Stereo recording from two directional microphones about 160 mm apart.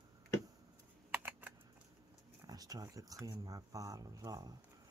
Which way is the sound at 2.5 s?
25° right (ahead or behind).